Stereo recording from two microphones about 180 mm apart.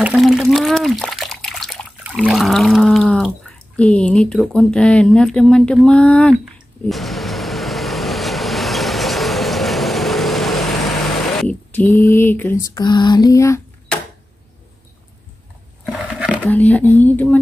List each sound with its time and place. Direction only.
0.0 s water: 5° right (ahead or behind)
3.7 s speech: 5° left (ahead or behind)
6.9 s vehicle: centre (ahead or behind)
11.3 s speech: 10° left (ahead or behind)
12.7 s a sound: 25° left (ahead or behind)
16.3 s speech: 10° left (ahead or behind)